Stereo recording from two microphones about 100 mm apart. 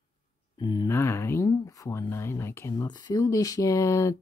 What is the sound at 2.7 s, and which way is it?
Speech, 45° left (ahead or behind).